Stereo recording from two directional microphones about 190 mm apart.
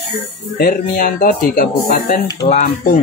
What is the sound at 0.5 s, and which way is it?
Speech, 50° left (ahead or behind).